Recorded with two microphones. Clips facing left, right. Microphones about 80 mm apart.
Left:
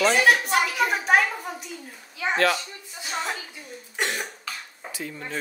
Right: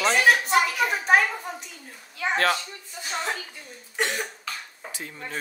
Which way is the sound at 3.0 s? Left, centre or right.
Centre.